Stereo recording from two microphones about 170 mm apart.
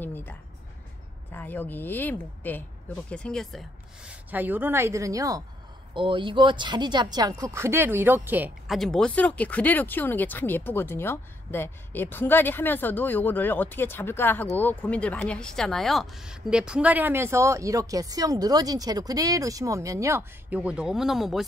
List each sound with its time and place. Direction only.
0.0 s music: 10° left (ahead or behind)
1.3 s speech: 10° left (ahead or behind); by 8.7 s 10° right (ahead or behind)
8.7 s speech: 5° left (ahead or behind)